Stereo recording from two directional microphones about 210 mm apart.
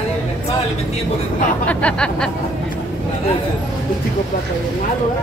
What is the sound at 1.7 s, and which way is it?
Speech, 5° left (ahead or behind).